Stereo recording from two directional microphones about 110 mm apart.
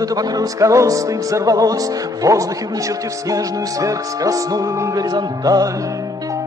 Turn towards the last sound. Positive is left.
turn(degrees=-35)  # may be behind; listen again after turning